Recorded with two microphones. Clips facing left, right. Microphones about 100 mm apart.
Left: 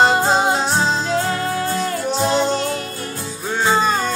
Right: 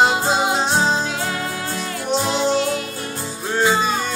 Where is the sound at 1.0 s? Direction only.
40° left (ahead or behind).